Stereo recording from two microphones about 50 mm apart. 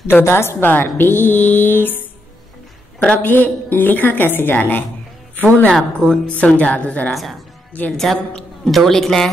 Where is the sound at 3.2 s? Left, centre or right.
Left.